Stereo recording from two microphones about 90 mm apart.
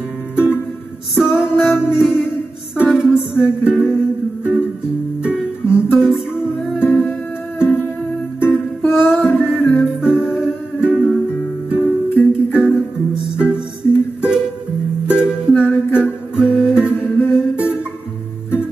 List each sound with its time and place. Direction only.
1.1 s music: 5° right (ahead or behind)